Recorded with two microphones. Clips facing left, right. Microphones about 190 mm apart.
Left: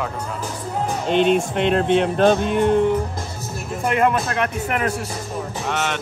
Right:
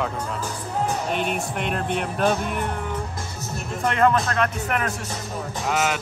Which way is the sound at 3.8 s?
10° left (ahead or behind).